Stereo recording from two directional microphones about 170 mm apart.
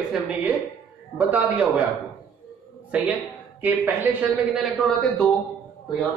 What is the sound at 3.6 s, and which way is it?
Speech, 10° right (ahead or behind).